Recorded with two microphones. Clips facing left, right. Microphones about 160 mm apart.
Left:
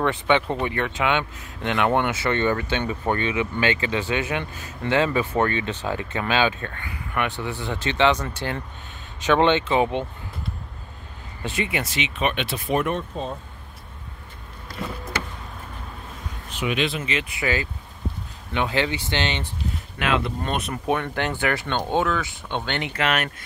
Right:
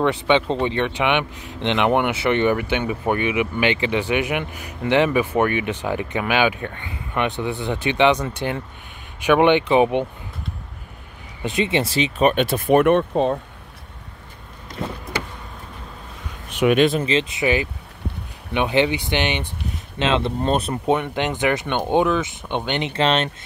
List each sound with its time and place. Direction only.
0.0 s speech: 15° right (ahead or behind)
11.4 s speech: 20° right (ahead or behind); by 13.4 s 65° right (ahead or behind)
16.4 s speech: 60° right (ahead or behind)
17.0 s speech: 30° right (ahead or behind)
20.0 s speech: 25° right (ahead or behind)